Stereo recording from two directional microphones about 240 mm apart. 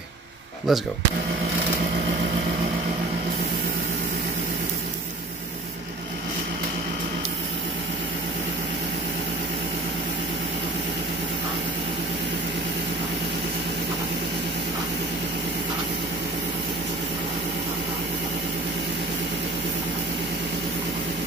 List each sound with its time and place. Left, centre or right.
0.7 s speech: centre